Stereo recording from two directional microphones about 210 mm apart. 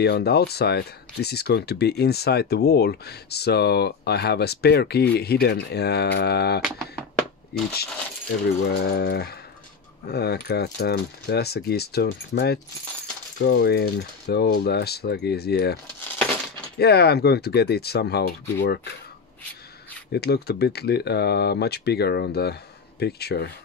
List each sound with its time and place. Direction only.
0.0 s speech: 50° left (ahead or behind)
20.1 s speech: 50° left (ahead or behind)